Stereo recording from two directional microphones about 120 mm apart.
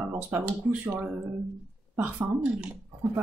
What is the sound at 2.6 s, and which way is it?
Speech, 10° right (ahead or behind).